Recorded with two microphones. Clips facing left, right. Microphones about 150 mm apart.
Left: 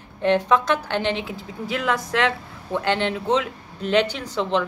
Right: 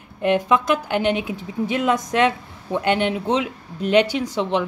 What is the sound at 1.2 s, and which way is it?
A woman's voice, 20° right (ahead or behind).